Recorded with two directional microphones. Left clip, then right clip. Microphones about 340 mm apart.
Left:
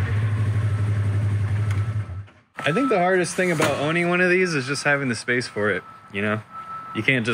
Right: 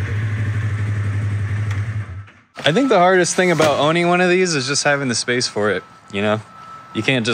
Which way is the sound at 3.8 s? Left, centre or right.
Centre.